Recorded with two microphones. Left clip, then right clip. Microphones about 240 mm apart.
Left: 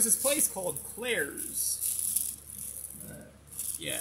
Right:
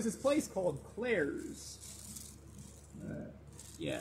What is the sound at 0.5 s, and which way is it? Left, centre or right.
Speech, left.